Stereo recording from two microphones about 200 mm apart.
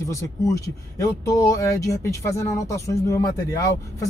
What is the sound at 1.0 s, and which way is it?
Speech, 15° left (ahead or behind).